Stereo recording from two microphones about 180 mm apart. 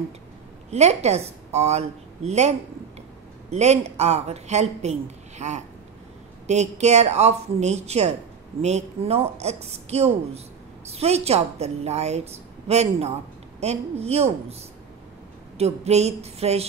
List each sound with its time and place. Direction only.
0.7 s a woman's voice: 35° right (ahead or behind)